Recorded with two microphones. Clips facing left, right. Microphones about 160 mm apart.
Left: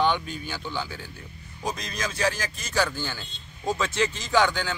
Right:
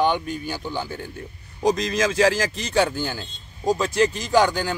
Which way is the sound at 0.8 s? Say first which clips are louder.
Right 6 dB; 50° right (ahead or behind).